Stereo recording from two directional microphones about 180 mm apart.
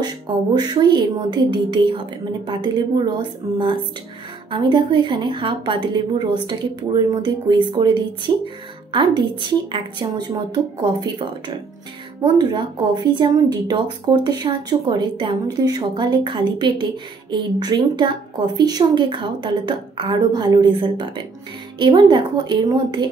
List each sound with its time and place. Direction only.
0.6 s speech: 25° right (ahead or behind)